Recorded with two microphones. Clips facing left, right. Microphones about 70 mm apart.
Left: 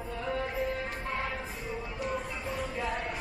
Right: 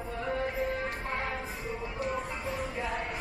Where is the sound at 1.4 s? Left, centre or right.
Centre.